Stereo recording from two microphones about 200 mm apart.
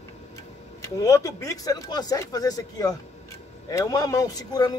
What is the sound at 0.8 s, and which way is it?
Speech, 15° left (ahead or behind).